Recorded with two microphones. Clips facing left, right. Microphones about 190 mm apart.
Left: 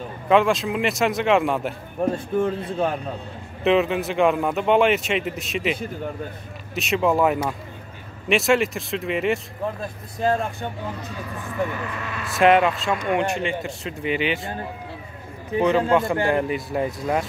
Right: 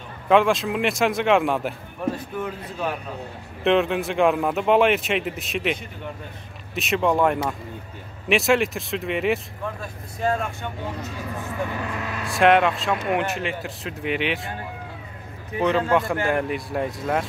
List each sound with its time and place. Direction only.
0.3 s a man's voice: centre (ahead or behind)
2.0 s speech: 30° left (ahead or behind)
3.6 s a man's voice: centre (ahead or behind)
10.2 s speech: 35° left (ahead or behind)
12.3 s a man's voice: centre (ahead or behind)
15.6 s a man's voice: centre (ahead or behind)